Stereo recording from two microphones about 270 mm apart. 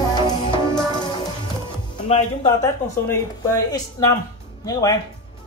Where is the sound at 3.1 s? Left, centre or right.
Centre.